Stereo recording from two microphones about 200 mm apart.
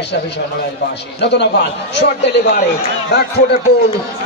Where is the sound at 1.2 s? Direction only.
60° left (ahead or behind).